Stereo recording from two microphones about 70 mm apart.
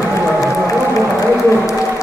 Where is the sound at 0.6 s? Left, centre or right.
Left.